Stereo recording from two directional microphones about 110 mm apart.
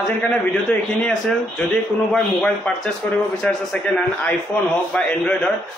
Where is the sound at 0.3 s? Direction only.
10° left (ahead or behind).